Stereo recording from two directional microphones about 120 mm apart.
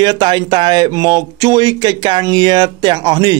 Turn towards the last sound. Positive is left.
turn(degrees=-35)  # may be behind; listen again after turning